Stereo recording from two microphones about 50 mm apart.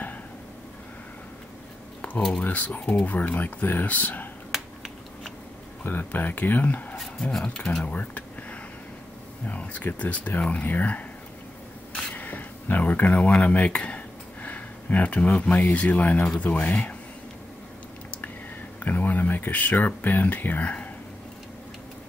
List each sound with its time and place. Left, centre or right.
2.4 s speech: left
4.5 s finger snapping: centre
5.9 s speech: left
7.0 s speech: centre
7.8 s a sound: left
9.5 s speech: left
11.9 s a sound: centre
12.2 s a sound: left
15.7 s speech: left
18.8 s speech: left